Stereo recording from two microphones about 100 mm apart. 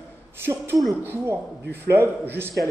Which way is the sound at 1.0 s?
25° right (ahead or behind).